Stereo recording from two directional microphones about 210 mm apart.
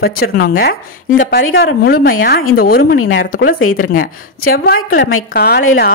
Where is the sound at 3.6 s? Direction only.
90° left.